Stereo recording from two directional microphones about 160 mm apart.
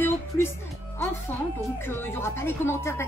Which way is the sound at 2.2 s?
15° left (ahead or behind).